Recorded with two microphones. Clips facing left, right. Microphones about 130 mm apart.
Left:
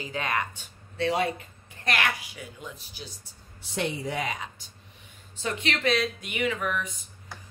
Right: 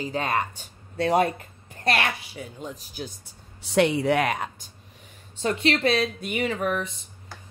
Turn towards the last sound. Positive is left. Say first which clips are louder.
# right 3 dB
turn(degrees=-35)  # may be behind; listen again after turning